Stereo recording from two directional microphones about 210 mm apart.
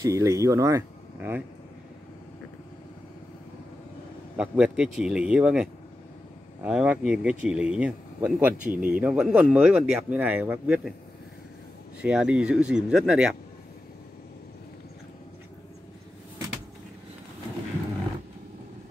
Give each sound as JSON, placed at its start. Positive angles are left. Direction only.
{"t": 0.0, "sound": "speech", "side_deg": -15}
{"t": 4.4, "sound": "speech", "side_deg": -5}
{"t": 8.6, "sound": "speech", "side_deg": -40}
{"t": 8.9, "sound": "speech", "side_deg": -5}
{"t": 12.0, "sound": "speech", "side_deg": -5}